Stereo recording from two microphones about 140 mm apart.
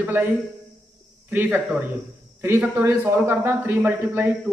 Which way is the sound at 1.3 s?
15° right (ahead or behind).